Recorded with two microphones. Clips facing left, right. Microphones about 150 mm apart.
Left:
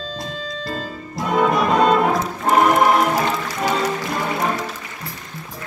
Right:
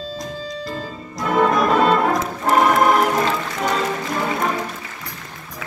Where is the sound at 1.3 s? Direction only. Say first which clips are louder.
Right 1 dB; centre (ahead or behind).